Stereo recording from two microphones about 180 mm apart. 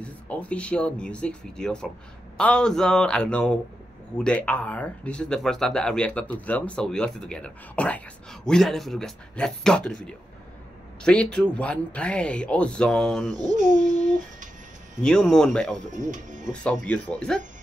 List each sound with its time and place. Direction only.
0.0 s speech: 5° left (ahead or behind)
13.3 s speech: 20° right (ahead or behind)
15.0 s speech: 5° left (ahead or behind)
15.9 s speech: 45° right (ahead or behind)
16.8 s speech: 5° left (ahead or behind)